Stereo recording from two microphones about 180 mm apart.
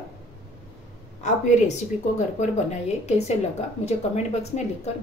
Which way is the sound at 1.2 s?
40° left (ahead or behind).